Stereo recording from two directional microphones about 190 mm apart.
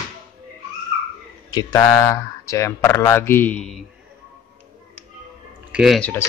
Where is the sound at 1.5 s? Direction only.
20° left (ahead or behind).